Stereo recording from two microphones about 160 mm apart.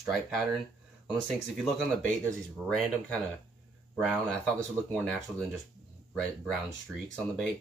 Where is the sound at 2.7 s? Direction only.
5° left (ahead or behind).